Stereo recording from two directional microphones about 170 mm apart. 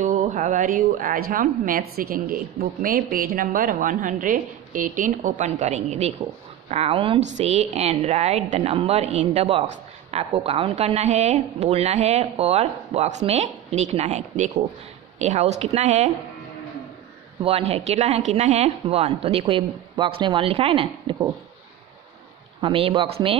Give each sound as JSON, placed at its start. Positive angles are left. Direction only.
{"t": 0.0, "sound": "a woman's voice", "side_deg": -45}
{"t": 17.4, "sound": "a woman's voice", "side_deg": -35}
{"t": 22.6, "sound": "a woman's voice", "side_deg": -30}